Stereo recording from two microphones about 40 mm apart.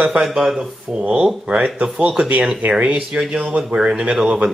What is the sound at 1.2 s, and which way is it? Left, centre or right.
Speech, right.